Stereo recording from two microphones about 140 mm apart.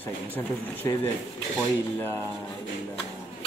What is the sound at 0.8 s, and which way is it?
Speech, 20° left (ahead or behind).